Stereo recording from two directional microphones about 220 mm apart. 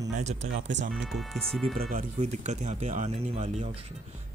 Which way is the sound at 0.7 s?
55° right (ahead or behind).